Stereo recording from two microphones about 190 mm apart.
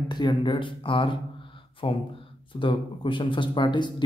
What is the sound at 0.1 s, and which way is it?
Speech, 20° left (ahead or behind).